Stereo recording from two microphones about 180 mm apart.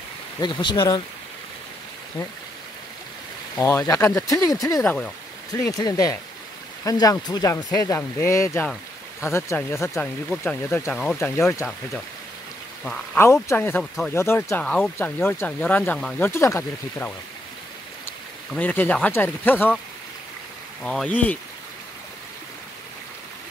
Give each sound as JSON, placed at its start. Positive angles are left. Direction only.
{"t": 0.4, "sound": "speech", "side_deg": 25}
{"t": 3.5, "sound": "speech", "side_deg": 15}
{"t": 4.8, "sound": "speech", "side_deg": 5}
{"t": 5.5, "sound": "speech", "side_deg": 20}
{"t": 12.8, "sound": "speech", "side_deg": 5}
{"t": 18.5, "sound": "speech", "side_deg": 10}
{"t": 20.8, "sound": "speech", "side_deg": 5}